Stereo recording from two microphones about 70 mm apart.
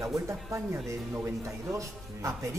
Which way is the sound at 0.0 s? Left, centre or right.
Right.